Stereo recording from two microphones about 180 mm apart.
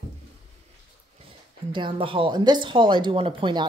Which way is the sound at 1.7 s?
30° right (ahead or behind).